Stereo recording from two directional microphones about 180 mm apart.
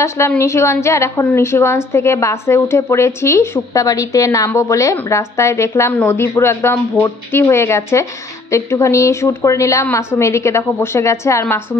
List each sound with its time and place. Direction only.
0.4 s a woman's voice: 15° left (ahead or behind)